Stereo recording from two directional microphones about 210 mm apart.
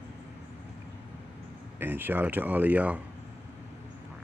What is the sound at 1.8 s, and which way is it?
Speech, 10° right (ahead or behind).